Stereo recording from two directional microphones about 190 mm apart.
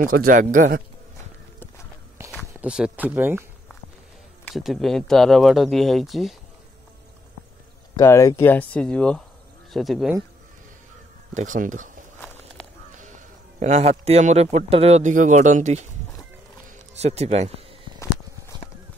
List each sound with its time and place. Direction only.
0.0 s speech: 50° right (ahead or behind)
2.6 s speech: 5° right (ahead or behind)
4.5 s speech: centre (ahead or behind)
8.0 s speech: 15° left (ahead or behind); by 10.1 s centre (ahead or behind)
11.3 s speech: 40° right (ahead or behind)
12.9 s a man's voice: 40° right (ahead or behind)
16.9 s speech: 35° right (ahead or behind)